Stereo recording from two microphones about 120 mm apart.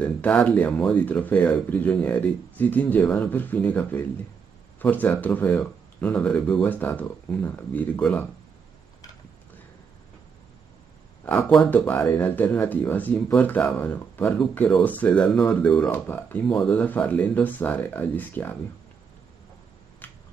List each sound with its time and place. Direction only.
0.0 s speech: 10° left (ahead or behind)
11.7 s speech: 10° left (ahead or behind)
20.0 s a sound: 15° left (ahead or behind)